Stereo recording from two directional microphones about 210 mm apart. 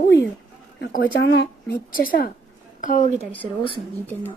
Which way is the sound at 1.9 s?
45° left (ahead or behind).